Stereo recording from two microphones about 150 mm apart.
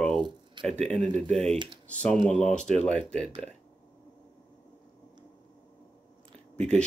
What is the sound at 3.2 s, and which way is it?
Speech, 50° right (ahead or behind).